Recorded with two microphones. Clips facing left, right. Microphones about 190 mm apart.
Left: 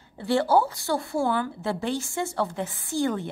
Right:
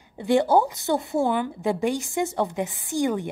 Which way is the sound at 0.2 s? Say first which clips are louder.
Right 2 dB; 20° right (ahead or behind).